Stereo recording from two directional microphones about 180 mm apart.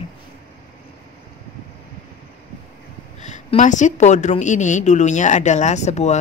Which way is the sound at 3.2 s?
40° left (ahead or behind).